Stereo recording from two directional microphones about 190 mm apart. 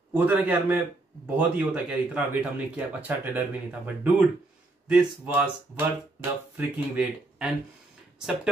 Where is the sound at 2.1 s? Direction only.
5° right (ahead or behind).